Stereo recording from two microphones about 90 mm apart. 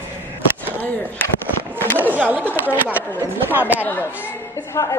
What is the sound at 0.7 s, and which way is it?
Speech, 20° left (ahead or behind).